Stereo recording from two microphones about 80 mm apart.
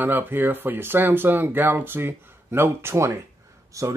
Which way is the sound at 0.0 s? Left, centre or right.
Right.